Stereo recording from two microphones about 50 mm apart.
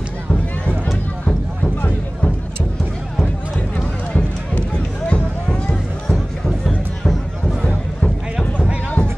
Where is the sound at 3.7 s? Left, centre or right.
Left.